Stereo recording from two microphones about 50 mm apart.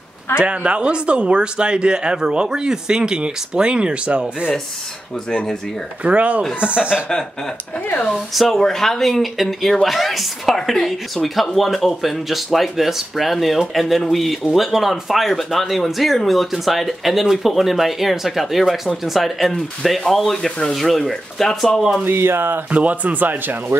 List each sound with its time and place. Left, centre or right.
0.4 s speech: right
5.3 s speech: centre
6.0 s speech: right
8.3 s speech: centre
22.0 s speech: right
22.7 s speech: right